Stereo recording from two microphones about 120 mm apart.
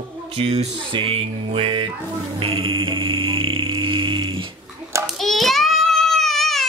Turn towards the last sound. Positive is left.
turn(degrees=0)  # may be behind; listen again after turning